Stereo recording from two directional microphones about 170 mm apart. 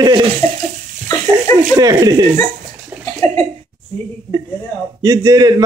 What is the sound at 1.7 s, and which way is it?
Speech, 20° right (ahead or behind).